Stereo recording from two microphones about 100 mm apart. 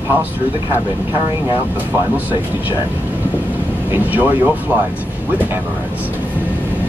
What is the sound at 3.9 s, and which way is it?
Speech, 20° right (ahead or behind).